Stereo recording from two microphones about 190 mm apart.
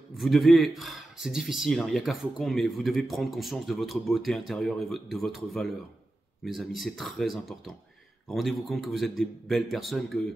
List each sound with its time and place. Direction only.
0.2 s speech: centre (ahead or behind)